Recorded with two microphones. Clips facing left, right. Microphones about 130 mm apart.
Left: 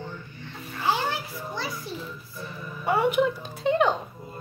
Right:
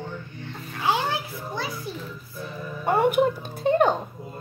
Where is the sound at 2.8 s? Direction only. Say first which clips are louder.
Right 2 dB; 50° right (ahead or behind).